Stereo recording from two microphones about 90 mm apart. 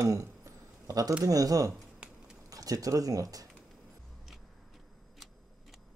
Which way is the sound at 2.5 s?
40° right (ahead or behind).